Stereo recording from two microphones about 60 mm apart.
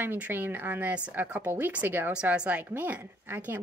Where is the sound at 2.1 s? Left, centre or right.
Centre; by 3.6 s right.